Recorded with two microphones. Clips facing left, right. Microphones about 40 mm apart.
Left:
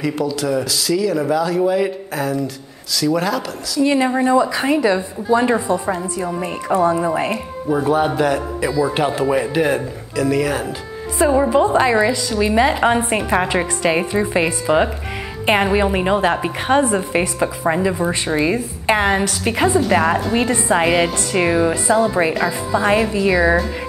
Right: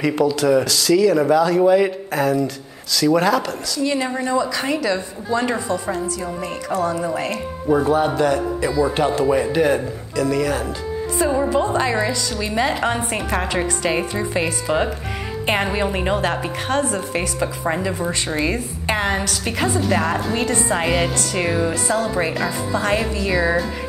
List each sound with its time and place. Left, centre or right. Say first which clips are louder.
0.0 s speech: right 3 dB; centre
3.8 s a woman's voice: left 6 dB; left
7.6 s a woman's voice: even; centre